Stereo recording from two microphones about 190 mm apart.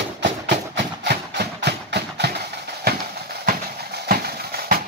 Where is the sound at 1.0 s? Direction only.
60° right (ahead or behind).